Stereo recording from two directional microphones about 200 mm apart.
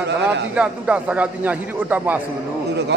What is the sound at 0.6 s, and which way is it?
A man's voice, 5° right (ahead or behind).